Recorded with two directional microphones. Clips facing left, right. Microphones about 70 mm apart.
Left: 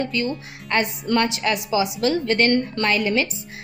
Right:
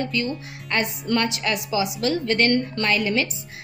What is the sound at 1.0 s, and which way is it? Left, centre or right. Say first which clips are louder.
A woman's voice: left 2 dB; left.